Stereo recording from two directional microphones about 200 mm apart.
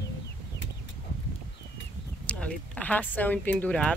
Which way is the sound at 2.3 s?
5° left (ahead or behind).